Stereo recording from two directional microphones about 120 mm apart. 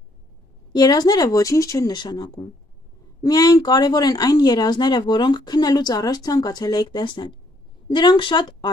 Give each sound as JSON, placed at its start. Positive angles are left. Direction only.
{"t": 0.7, "sound": "speech", "side_deg": 35}